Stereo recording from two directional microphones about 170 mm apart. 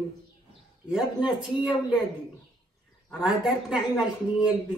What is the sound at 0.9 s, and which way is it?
Speech, 5° right (ahead or behind).